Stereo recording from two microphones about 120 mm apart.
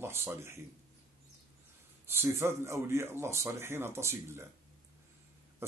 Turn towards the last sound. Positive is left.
turn(degrees=-20)  # may be behind; listen again after turning